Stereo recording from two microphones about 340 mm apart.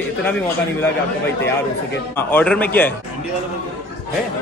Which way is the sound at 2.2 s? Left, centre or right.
Centre.